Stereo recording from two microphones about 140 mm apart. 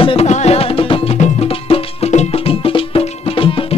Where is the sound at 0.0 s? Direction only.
40° left (ahead or behind).